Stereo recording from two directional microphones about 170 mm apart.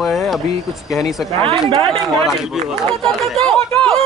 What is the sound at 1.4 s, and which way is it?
Speech, 35° right (ahead or behind).